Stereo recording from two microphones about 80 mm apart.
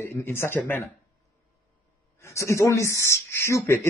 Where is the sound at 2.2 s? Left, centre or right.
Left.